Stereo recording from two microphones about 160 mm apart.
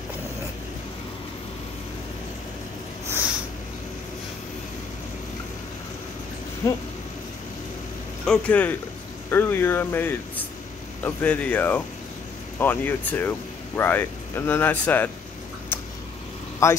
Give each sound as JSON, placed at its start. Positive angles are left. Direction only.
{"t": 6.6, "sound": "speech", "side_deg": 20}
{"t": 8.3, "sound": "speech", "side_deg": 10}
{"t": 15.7, "sound": "vehicle", "side_deg": 15}
{"t": 16.6, "sound": "speech", "side_deg": 15}